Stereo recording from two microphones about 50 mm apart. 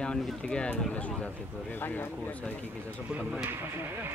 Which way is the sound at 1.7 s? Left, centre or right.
Left.